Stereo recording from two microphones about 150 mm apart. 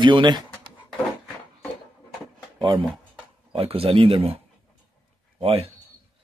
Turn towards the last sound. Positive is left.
turn(degrees=-40)  # may be behind; listen again after turning